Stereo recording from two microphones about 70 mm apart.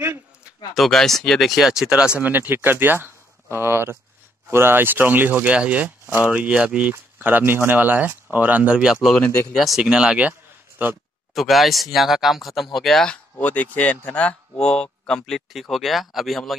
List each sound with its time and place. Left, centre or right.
0.7 s speech: centre
2.2 s speech: right
10.8 s speech: right
11.3 s speech: centre
13.0 s speech: centre